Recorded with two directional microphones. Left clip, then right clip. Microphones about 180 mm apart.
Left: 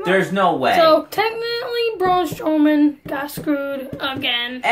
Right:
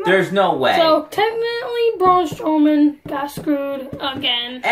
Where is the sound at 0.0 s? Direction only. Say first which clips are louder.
Right 1 dB; 5° right (ahead or behind).